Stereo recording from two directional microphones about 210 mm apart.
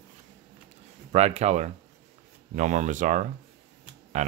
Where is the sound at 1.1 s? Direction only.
30° right (ahead or behind).